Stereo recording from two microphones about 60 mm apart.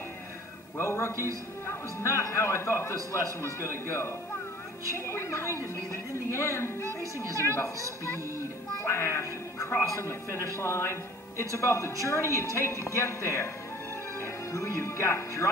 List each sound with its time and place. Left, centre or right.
0.7 s a man's voice: left
8.8 s a man's voice: left